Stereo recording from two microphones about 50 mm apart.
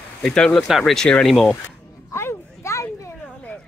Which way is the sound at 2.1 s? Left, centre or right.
Left.